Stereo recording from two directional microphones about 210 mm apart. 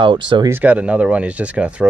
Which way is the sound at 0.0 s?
25° right (ahead or behind).